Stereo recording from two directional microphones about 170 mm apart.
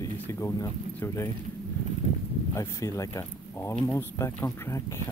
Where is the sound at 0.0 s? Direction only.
20° left (ahead or behind).